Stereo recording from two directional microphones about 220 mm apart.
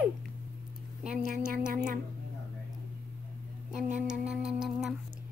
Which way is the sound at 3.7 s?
35° right (ahead or behind).